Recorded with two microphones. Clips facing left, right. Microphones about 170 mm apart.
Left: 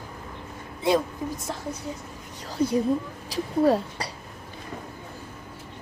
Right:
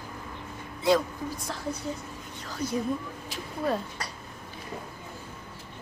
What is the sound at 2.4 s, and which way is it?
Speech, 30° left (ahead or behind).